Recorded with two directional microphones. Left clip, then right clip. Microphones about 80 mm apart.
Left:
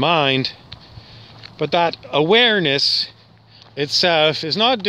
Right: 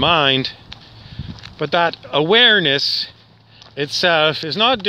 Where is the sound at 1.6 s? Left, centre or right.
Left.